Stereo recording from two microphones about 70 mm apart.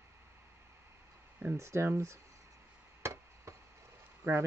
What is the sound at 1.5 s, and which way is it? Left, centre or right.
Speech, right.